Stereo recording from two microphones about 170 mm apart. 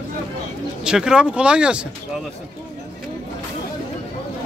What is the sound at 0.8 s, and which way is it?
Speech, 5° right (ahead or behind).